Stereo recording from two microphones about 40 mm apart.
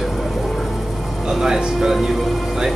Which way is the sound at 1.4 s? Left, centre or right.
Centre.